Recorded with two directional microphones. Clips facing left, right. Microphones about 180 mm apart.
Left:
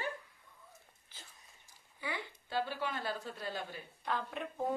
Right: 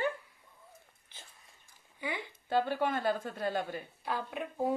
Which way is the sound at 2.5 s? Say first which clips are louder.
Right 7 dB; 55° right (ahead or behind).